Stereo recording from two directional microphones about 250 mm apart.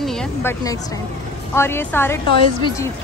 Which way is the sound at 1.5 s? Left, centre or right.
Centre.